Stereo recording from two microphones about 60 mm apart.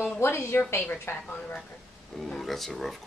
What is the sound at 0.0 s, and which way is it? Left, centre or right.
A woman's voice, left.